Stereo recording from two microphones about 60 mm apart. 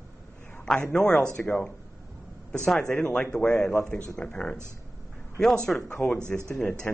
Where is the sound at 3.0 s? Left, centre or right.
Left.